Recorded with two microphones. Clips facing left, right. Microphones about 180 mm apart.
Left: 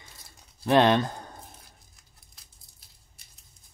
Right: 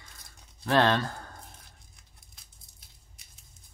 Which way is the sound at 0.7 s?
20° left (ahead or behind).